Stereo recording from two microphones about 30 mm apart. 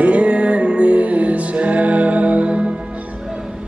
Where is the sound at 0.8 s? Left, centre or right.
Right.